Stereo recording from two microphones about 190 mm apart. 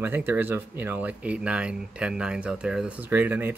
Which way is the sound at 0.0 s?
10° right (ahead or behind).